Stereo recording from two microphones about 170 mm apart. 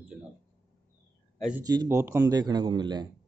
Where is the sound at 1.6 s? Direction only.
20° right (ahead or behind).